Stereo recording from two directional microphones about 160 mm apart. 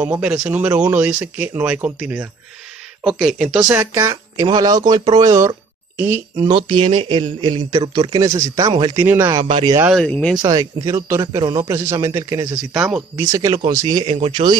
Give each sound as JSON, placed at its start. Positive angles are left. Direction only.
{"t": 0.0, "sound": "speech", "side_deg": -10}
{"t": 3.7, "sound": "speech", "side_deg": -15}
{"t": 9.5, "sound": "speech", "side_deg": -30}
{"t": 9.9, "sound": "speech", "side_deg": 5}
{"t": 10.4, "sound": "speech", "side_deg": -25}
{"t": 12.7, "sound": "speech", "side_deg": -5}
{"t": 13.1, "sound": "speech", "side_deg": -20}